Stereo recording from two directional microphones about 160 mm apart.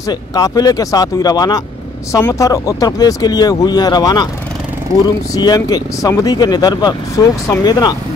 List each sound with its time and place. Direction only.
0.1 s speech: 25° left (ahead or behind)